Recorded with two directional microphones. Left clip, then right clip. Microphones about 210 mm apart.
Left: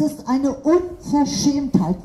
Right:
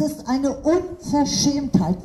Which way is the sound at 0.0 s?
45° right (ahead or behind).